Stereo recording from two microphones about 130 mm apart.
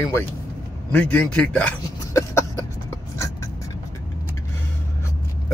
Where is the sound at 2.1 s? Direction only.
25° left (ahead or behind).